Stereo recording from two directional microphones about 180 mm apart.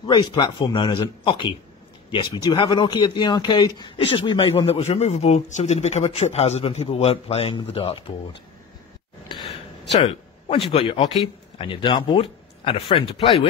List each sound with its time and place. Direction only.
0.0 s speech: 25° left (ahead or behind)
10.0 s speech: 30° left (ahead or behind)